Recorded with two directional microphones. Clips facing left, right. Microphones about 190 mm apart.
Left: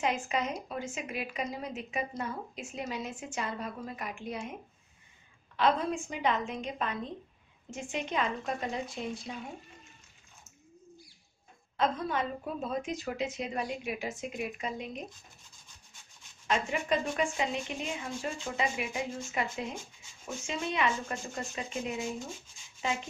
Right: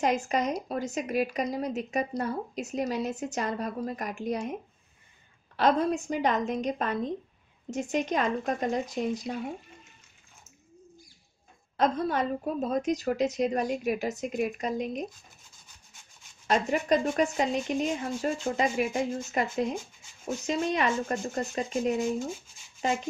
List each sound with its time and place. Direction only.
0.0 s a woman's voice: 40° right (ahead or behind)
5.6 s a woman's voice: 40° right (ahead or behind)
11.7 s a woman's voice: 40° right (ahead or behind)
16.4 s a woman's voice: 40° right (ahead or behind)
20.4 s a woman's voice: 40° right (ahead or behind)